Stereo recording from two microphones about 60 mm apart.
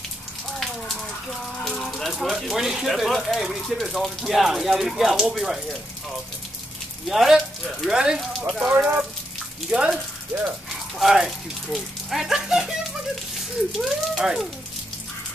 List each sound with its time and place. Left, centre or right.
1.6 s speech: centre
2.3 s speech: centre
7.1 s speech: centre
8.6 s speech: right
10.7 s a sound: centre
11.7 s speech: centre
13.7 s speech: centre